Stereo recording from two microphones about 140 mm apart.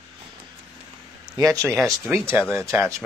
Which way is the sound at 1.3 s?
25° right (ahead or behind).